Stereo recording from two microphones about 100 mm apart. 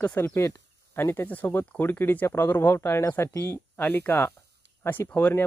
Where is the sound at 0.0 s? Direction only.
20° left (ahead or behind).